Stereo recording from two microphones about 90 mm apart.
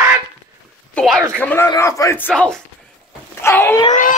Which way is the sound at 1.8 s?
35° left (ahead or behind).